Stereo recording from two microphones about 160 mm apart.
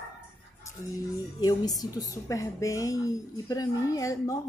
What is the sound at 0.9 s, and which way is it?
A woman's voice, 25° left (ahead or behind).